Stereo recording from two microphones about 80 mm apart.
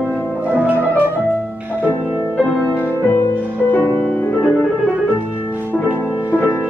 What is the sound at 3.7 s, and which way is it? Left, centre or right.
Music, left.